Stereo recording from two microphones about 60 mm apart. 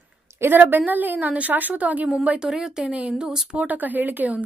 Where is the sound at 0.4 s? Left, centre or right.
Right.